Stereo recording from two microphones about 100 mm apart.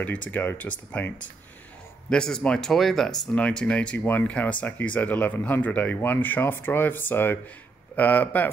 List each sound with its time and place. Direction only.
0.0 s speech: 15° left (ahead or behind)